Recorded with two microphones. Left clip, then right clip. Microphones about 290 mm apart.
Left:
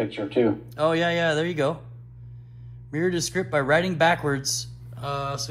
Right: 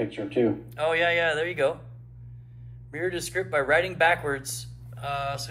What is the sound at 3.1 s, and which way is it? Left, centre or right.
Speech, centre.